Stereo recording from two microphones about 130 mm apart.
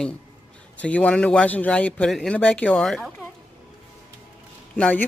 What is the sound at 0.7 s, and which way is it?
A man's voice, 10° left (ahead or behind).